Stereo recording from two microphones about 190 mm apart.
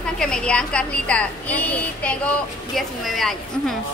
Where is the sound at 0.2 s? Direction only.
5° left (ahead or behind).